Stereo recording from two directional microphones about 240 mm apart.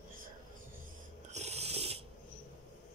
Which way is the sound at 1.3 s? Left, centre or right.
Right.